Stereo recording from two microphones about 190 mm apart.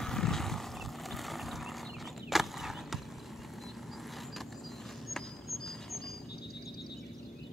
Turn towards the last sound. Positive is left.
turn(degrees=0)  # may be behind; listen again after turning